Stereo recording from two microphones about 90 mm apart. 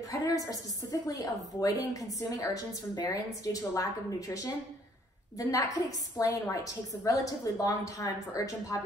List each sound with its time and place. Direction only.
0.1 s a woman's voice: 40° left (ahead or behind)